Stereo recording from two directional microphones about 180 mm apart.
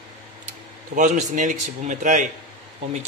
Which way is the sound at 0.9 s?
45° right (ahead or behind).